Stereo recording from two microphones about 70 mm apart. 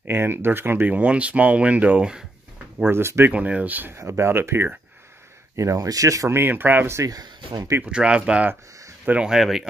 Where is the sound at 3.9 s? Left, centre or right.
Right.